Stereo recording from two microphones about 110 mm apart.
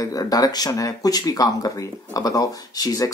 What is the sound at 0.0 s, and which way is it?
Speech, 35° left (ahead or behind).